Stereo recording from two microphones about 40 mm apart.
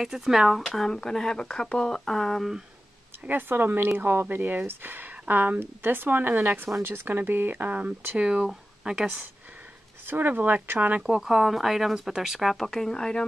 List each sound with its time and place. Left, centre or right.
0.0 s speech: centre
0.7 s speech: centre
3.3 s speech: right
4.0 s speech: right
4.4 s speech: right
5.1 s speech: right
5.6 s speech: right
6.6 s speech: right
8.2 s speech: right
10.0 s speech: right
11.1 s speech: centre